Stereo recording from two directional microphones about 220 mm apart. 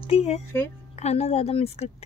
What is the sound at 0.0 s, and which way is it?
Speech, 30° left (ahead or behind).